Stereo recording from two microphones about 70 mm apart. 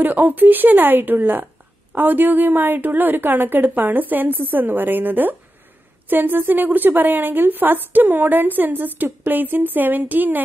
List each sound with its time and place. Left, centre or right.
0.0 s a woman's voice: right